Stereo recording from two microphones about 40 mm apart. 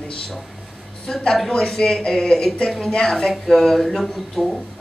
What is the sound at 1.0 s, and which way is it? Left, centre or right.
Speech, centre.